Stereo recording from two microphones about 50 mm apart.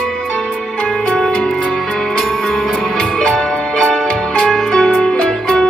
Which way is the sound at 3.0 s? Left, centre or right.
Centre.